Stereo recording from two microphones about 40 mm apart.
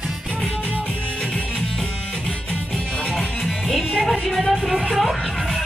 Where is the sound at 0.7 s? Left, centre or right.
Left.